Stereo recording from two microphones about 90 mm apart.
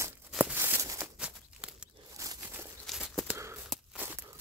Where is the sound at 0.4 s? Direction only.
20° right (ahead or behind).